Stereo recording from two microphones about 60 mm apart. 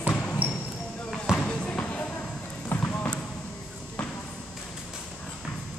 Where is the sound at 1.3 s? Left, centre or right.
Centre.